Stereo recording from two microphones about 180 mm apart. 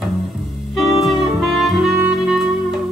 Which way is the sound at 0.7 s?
Centre (ahead or behind).